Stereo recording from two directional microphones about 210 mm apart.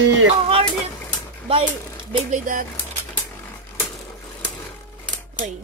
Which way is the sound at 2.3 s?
40° right (ahead or behind).